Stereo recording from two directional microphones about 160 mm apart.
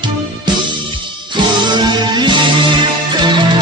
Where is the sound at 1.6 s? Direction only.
30° right (ahead or behind).